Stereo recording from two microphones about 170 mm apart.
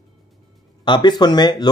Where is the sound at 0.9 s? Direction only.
25° left (ahead or behind).